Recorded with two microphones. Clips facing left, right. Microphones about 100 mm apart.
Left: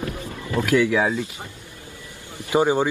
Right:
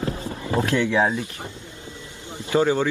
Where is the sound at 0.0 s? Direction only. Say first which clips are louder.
Right 2 dB; 30° right (ahead or behind).